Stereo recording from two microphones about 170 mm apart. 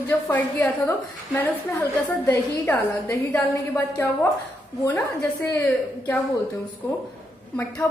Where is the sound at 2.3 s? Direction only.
15° left (ahead or behind).